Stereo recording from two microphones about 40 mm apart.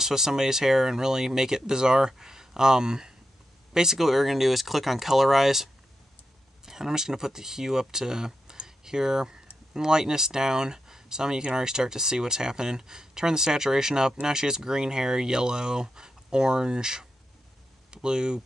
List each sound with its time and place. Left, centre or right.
0.0 s speech: centre